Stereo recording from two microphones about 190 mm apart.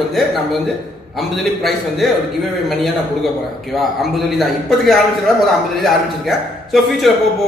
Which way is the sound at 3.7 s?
Centre (ahead or behind).